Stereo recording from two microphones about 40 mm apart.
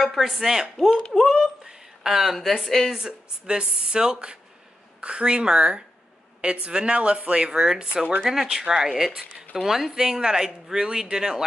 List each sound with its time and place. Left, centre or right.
0.0 s a woman's voice: centre
2.9 s speech: centre
8.2 s speech: centre